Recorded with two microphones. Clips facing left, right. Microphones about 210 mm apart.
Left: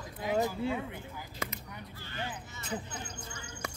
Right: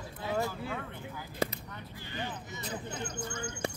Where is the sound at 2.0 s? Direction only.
15° right (ahead or behind).